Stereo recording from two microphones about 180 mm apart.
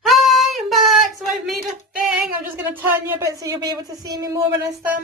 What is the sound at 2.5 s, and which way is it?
Speech, 10° right (ahead or behind).